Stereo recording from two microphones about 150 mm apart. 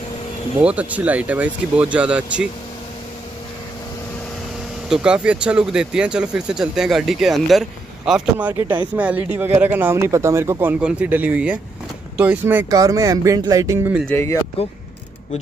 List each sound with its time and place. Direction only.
0.6 s speech: 10° right (ahead or behind)
4.8 s speech: 5° right (ahead or behind)
12.6 s speech: 25° right (ahead or behind)
14.0 s speech: 15° left (ahead or behind)